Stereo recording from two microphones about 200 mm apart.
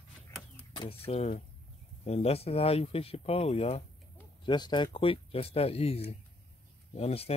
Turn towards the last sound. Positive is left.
turn(degrees=30)  # may be behind; listen again after turning